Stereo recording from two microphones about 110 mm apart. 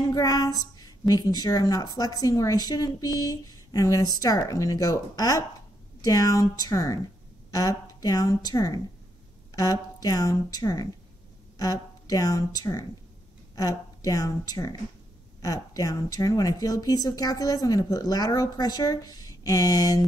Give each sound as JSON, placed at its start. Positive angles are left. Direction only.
{"t": 0.0, "sound": "female singing", "side_deg": 30}
{"t": 0.7, "sound": "a woman's voice", "side_deg": 35}